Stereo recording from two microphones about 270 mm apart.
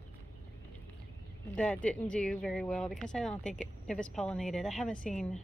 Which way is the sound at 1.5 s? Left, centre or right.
Centre.